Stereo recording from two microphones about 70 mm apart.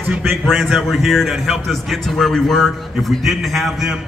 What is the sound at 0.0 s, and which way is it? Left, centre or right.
Speech, right.